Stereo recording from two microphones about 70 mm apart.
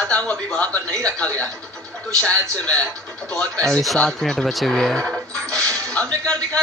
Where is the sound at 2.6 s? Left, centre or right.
Centre.